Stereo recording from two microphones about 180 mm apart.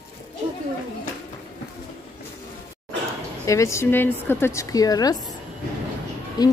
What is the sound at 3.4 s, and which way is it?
Speech, 15° left (ahead or behind).